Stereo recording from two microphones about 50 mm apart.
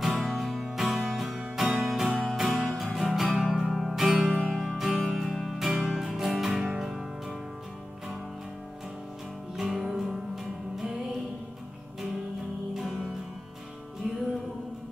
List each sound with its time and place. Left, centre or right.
0.2 s music: centre
9.6 s music: centre